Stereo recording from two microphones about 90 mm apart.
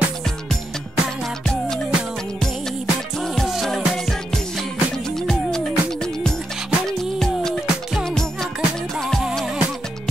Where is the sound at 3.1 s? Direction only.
5° left (ahead or behind).